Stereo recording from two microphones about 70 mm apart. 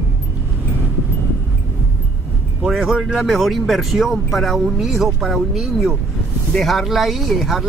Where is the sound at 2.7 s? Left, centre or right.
Centre.